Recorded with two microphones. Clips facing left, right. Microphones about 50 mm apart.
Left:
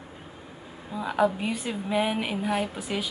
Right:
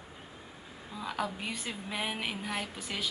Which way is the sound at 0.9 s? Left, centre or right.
Centre.